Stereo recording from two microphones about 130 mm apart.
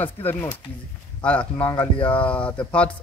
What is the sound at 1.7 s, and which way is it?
Speech, 40° left (ahead or behind).